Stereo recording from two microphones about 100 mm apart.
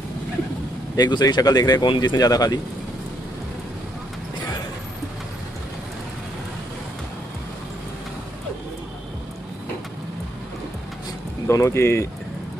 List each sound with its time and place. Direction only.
0.9 s speech: 40° left (ahead or behind)
11.4 s speech: 30° left (ahead or behind)